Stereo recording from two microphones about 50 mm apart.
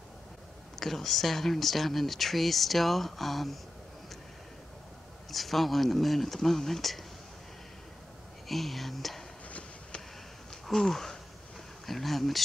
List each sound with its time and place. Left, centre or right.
0.7 s speech: centre
5.3 s speech: centre
8.5 s speech: centre
9.5 s a sound: left
10.5 s a sound: centre
11.8 s speech: centre